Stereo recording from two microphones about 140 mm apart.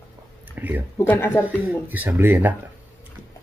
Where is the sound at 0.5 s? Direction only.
15° right (ahead or behind).